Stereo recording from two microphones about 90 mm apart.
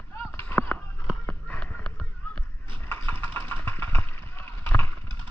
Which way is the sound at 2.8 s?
25° left (ahead or behind).